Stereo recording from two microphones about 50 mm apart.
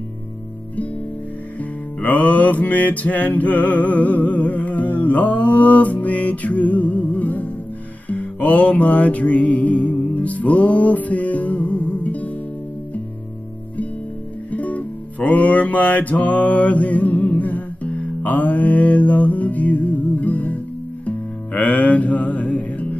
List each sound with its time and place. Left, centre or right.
1.6 s music: left
14.5 s music: left